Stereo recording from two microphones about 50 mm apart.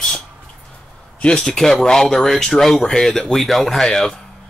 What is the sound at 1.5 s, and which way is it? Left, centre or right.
Speech, centre.